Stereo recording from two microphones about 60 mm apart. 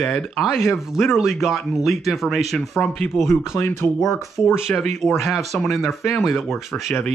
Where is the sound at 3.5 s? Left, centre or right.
Left.